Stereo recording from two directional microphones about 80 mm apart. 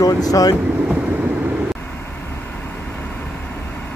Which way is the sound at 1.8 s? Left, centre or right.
Left.